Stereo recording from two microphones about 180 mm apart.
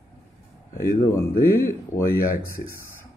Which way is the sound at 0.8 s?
15° left (ahead or behind).